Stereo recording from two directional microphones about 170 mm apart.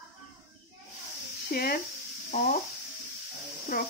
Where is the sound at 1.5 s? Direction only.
60° left (ahead or behind).